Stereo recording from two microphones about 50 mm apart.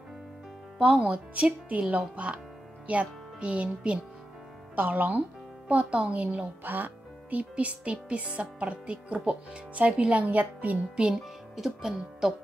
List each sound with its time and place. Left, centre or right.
0.7 s speech: centre
1.3 s speech: right
4.7 s speech: right
6.6 s speech: right
11.5 s speech: centre